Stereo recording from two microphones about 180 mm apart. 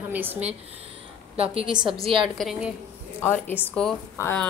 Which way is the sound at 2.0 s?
30° right (ahead or behind).